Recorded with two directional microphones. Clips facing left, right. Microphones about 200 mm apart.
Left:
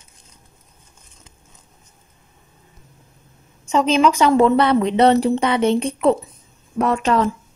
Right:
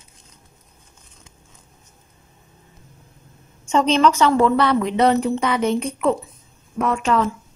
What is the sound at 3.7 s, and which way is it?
A woman's voice, centre (ahead or behind).